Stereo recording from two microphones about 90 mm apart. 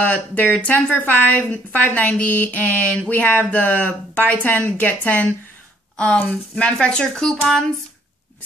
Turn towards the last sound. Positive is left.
turn(degrees=10)  # may be behind; listen again after turning